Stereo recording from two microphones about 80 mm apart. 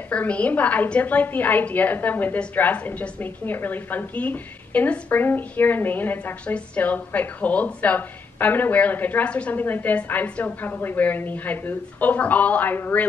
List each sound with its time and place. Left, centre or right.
0.1 s a woman's voice: centre